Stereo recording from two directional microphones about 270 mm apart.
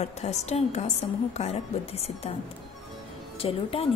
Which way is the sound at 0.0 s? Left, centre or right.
Left.